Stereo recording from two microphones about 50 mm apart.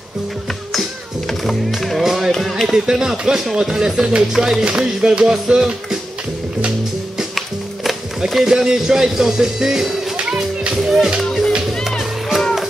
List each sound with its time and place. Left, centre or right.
1.4 s music: centre
8.5 s music: centre
10.1 s music: right
10.7 s music: centre
12.4 s music: centre